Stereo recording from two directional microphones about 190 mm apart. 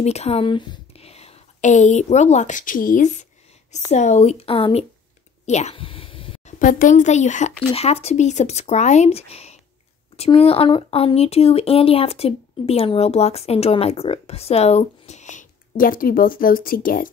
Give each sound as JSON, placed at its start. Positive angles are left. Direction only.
{"t": 0.0, "sound": "speech", "side_deg": 35}
{"t": 5.5, "sound": "a sound", "side_deg": 35}
{"t": 6.6, "sound": "speech", "side_deg": 45}